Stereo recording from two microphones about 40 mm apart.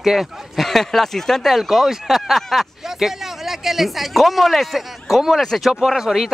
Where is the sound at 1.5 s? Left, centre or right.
Centre.